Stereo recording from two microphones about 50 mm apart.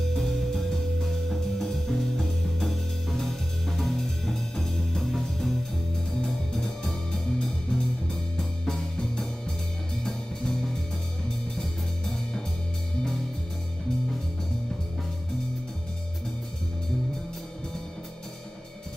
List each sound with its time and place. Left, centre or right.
0.1 s music: centre